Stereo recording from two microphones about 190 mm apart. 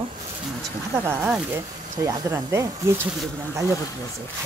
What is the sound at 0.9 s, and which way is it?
Speech, 10° right (ahead or behind).